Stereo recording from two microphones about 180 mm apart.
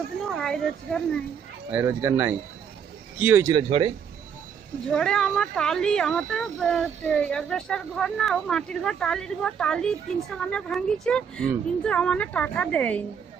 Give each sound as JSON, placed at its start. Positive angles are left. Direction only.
{"t": 0.3, "sound": "a woman's voice", "side_deg": 0}
{"t": 1.7, "sound": "speech", "side_deg": -10}
{"t": 3.5, "sound": "speech", "side_deg": -30}
{"t": 4.8, "sound": "speech", "side_deg": 5}